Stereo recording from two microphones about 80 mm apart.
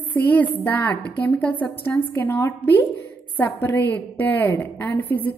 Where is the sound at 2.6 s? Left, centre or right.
Centre.